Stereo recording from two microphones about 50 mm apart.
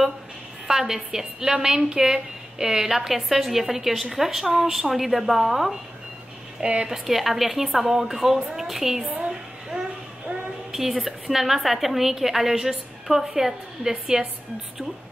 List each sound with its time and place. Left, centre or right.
0.7 s a woman's voice: centre
6.6 s a woman's voice: right
6.9 s a woman's voice: centre